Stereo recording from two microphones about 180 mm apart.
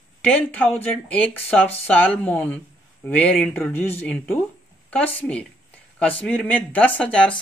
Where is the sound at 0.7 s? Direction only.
5° left (ahead or behind).